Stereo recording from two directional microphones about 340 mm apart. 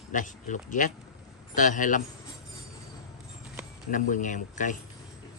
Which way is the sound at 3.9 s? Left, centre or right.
Left.